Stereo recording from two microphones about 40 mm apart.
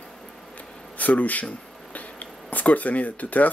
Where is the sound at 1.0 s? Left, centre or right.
Left.